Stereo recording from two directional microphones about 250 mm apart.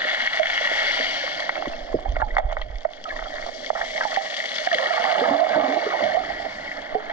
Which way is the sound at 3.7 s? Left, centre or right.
Centre.